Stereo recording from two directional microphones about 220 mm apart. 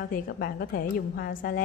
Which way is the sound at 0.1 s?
40° left (ahead or behind).